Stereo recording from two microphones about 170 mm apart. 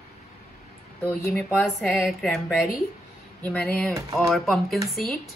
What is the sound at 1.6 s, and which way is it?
A woman's voice, centre (ahead or behind).